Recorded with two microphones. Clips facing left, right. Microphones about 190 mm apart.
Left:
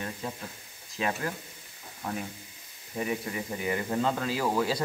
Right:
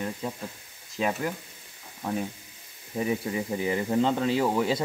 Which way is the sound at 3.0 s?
25° right (ahead or behind).